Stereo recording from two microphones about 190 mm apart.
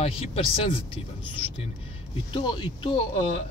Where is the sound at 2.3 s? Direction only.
25° left (ahead or behind).